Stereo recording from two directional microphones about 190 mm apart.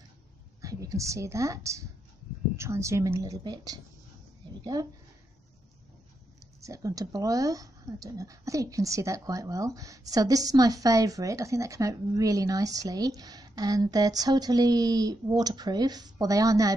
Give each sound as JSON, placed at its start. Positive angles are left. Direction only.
{"t": 0.6, "sound": "speech", "side_deg": -15}
{"t": 6.6, "sound": "speech", "side_deg": -15}